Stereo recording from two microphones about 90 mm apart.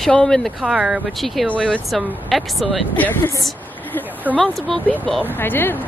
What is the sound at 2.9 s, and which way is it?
Speech, 20° left (ahead or behind).